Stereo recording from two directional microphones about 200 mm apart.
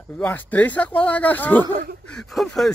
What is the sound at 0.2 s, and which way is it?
Speech, 10° left (ahead or behind).